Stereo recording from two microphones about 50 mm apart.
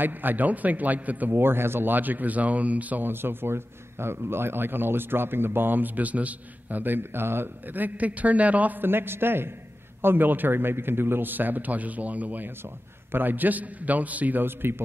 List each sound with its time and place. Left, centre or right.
0.0 s a man's voice: right
1.3 s a man's voice: right
3.1 s speech: right
8.8 s a man's voice: right
14.4 s speech: right